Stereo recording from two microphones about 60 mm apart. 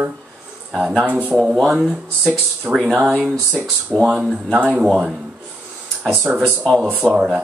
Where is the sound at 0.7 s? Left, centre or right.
Centre.